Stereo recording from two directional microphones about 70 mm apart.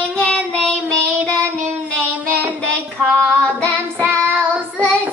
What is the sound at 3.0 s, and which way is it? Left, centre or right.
Child singing, centre.